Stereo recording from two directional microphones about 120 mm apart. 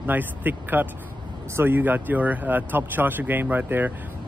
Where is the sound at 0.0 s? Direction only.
15° right (ahead or behind).